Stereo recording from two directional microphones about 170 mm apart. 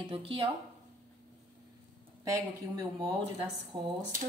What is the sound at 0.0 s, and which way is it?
Speech, 30° right (ahead or behind).